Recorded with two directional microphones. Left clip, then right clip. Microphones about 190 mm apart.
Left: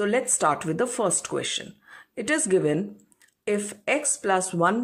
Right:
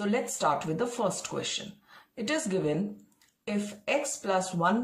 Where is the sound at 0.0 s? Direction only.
30° left (ahead or behind).